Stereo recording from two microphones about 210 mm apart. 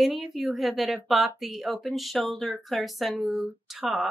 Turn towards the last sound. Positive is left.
turn(degrees=0)  # may be behind; listen again after turning